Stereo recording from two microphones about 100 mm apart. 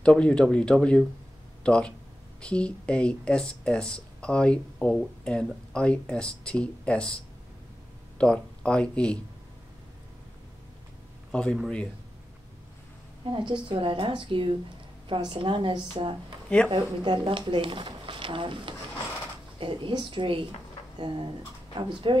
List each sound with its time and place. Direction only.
0.0 s speech: 10° left (ahead or behind)
8.2 s speech: 10° left (ahead or behind)
13.2 s speech: 55° right (ahead or behind)
16.4 s speech: 10° left (ahead or behind)
16.7 s speech: 60° right (ahead or behind)